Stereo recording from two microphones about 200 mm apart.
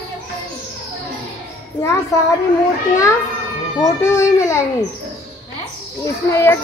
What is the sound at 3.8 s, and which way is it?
Speech, 15° left (ahead or behind).